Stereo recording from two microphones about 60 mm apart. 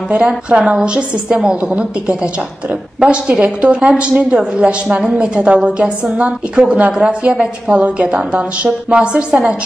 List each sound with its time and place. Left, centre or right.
0.5 s a woman's voice: centre